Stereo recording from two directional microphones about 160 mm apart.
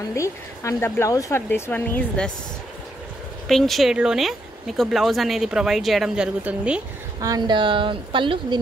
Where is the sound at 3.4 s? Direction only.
Centre (ahead or behind).